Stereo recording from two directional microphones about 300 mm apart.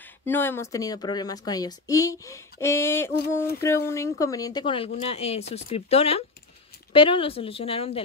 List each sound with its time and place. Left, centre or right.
0.2 s speech: centre